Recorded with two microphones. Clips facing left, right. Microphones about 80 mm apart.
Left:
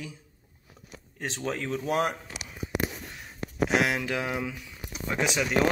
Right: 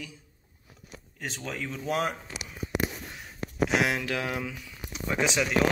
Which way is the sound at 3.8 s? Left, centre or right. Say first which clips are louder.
Even; centre.